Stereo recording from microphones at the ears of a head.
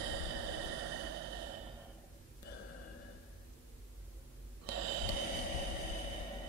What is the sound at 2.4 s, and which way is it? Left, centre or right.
Gasp, left.